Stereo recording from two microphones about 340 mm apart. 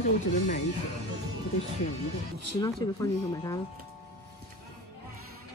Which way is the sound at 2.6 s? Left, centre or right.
Centre.